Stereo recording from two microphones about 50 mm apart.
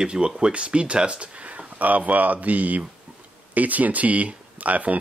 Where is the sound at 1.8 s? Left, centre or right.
Right.